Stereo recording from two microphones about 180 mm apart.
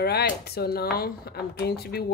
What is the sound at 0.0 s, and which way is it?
Speech, 65° left (ahead or behind).